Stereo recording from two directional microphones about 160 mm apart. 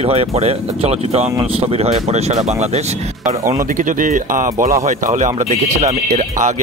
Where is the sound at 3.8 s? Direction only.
55° right (ahead or behind).